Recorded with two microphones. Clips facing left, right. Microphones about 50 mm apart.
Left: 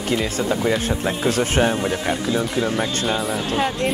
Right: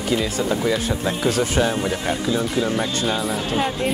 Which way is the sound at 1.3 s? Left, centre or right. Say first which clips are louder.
Left 1 dB; left.